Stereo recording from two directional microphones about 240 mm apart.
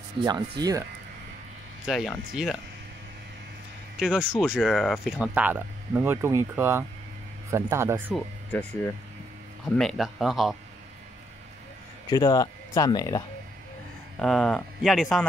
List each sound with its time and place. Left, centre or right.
0.2 s speech: centre
1.9 s speech: centre
4.0 s speech: centre
8.1 s speech: centre
12.1 s speech: centre
14.2 s speech: centre